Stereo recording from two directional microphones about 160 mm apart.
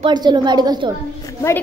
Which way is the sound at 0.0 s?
25° right (ahead or behind).